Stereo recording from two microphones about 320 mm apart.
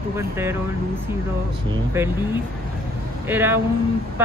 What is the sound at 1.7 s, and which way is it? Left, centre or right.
Speech, centre.